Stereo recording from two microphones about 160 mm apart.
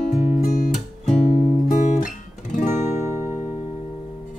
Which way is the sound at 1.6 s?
55° left (ahead or behind).